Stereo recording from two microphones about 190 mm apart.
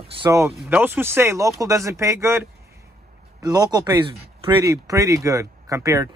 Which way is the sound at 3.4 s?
20° right (ahead or behind).